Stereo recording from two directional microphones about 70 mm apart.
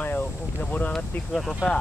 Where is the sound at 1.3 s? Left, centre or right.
Centre.